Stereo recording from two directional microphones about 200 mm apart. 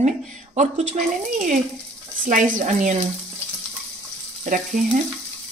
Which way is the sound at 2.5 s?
40° right (ahead or behind).